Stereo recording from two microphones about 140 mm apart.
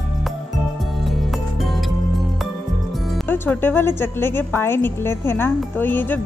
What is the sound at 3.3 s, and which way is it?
A woman's voice, 15° left (ahead or behind).